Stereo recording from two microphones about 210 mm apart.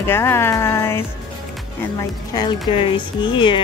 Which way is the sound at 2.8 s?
25° left (ahead or behind).